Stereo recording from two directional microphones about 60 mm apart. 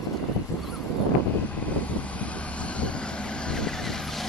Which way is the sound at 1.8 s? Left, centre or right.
Left.